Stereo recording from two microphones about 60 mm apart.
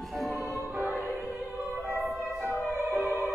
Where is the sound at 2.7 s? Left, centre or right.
Right.